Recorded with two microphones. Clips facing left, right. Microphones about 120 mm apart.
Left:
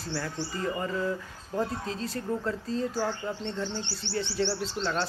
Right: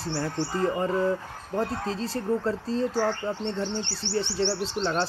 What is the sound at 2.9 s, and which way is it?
Speech, 65° right (ahead or behind).